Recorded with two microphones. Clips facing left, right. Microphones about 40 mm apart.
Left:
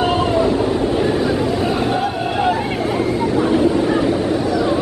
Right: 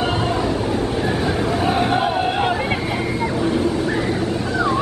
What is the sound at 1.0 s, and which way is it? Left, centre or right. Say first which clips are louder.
Vehicle: left 3 dB; centre.